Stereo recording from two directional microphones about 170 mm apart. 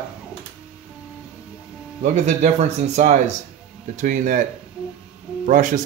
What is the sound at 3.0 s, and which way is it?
Speech, 45° right (ahead or behind).